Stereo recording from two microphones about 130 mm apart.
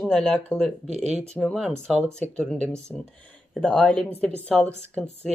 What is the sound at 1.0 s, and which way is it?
Speech, 60° right (ahead or behind).